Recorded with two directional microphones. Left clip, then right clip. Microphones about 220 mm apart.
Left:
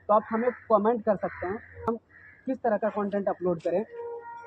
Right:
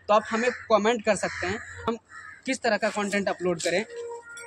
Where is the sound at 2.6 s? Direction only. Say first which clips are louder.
Right 1 dB; 20° right (ahead or behind).